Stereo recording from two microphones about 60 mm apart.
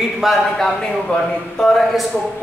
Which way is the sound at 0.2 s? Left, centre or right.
Centre.